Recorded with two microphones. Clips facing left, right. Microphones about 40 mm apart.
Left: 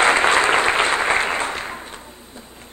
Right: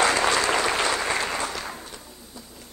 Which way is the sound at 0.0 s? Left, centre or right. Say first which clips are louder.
Left 6 dB; left.